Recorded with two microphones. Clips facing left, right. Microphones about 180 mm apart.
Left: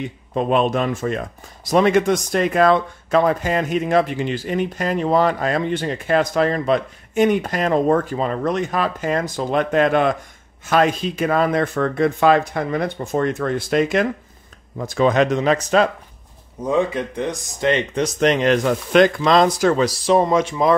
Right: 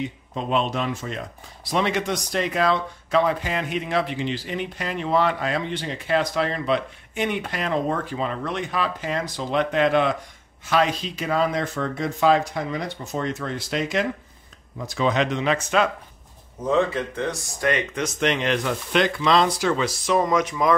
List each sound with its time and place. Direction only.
0.3 s speech: 55° left (ahead or behind); by 15.9 s 35° left (ahead or behind)
16.6 s speech: 15° left (ahead or behind)